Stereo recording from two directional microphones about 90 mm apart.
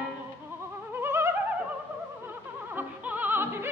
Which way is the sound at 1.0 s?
30° right (ahead or behind).